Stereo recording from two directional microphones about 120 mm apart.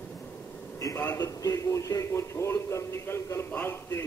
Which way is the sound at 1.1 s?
30° left (ahead or behind).